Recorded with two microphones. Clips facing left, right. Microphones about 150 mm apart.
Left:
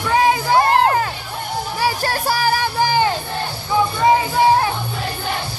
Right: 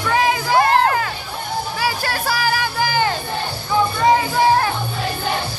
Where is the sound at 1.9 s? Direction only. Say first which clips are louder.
Left 4 dB; 35° left (ahead or behind).